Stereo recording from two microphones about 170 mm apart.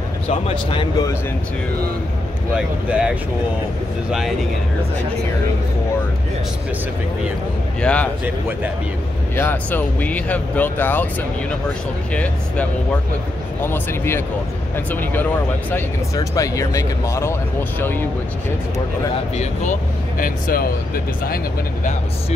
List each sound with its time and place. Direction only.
0.3 s speech: 35° left (ahead or behind)
2.5 s speech: 5° right (ahead or behind)
7.8 s speech: 5° left (ahead or behind)
9.3 s speech: 10° left (ahead or behind)
12.1 s speech: 5° left (ahead or behind)
19.3 s speech: 45° left (ahead or behind); by 21.4 s 60° left (ahead or behind)